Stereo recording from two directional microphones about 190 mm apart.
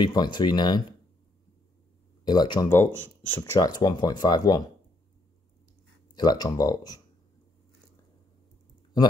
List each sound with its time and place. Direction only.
0.0 s speech: 25° left (ahead or behind)
2.2 s speech: 25° left (ahead or behind)
6.1 s speech: 20° left (ahead or behind)